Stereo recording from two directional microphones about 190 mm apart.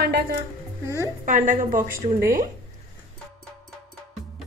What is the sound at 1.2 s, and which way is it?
Speech, 40° right (ahead or behind).